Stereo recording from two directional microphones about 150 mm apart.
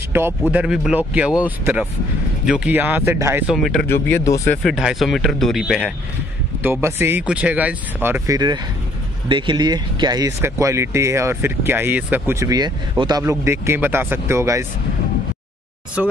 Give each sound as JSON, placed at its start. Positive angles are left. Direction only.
{"t": 0.5, "sound": "speech", "side_deg": -5}
{"t": 3.4, "sound": "speech", "side_deg": 0}
{"t": 4.1, "sound": "speech", "side_deg": 15}
{"t": 4.6, "sound": "speech", "side_deg": 0}
{"t": 6.6, "sound": "speech", "side_deg": -15}
{"t": 8.3, "sound": "speech", "side_deg": -25}
{"t": 16.0, "sound": "speech", "side_deg": -5}